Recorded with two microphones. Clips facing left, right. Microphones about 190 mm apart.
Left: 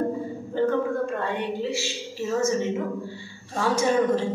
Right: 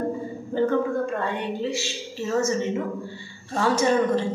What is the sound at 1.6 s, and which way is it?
A woman's voice, 10° left (ahead or behind).